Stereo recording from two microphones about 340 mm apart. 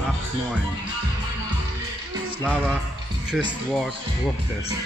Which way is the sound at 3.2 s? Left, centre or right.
Centre.